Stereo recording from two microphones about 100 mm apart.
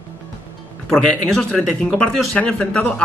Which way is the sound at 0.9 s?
5° left (ahead or behind).